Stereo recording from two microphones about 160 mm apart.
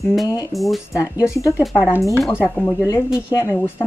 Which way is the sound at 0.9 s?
20° left (ahead or behind).